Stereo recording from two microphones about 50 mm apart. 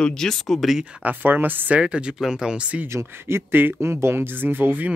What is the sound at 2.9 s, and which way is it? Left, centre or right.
Speech, right.